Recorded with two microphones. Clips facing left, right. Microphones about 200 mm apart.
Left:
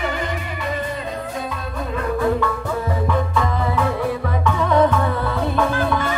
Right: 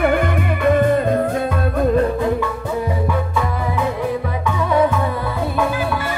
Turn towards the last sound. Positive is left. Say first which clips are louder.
# left 1 dB
turn(degrees=-10)  # may be behind; listen again after turning